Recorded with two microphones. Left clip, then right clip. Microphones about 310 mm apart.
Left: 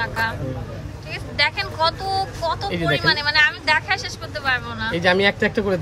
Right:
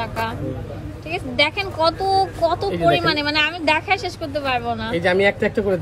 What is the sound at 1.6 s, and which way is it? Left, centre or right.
Speech, centre.